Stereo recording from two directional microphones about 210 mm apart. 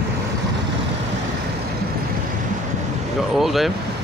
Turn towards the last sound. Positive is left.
turn(degrees=0)  # may be behind; listen again after turning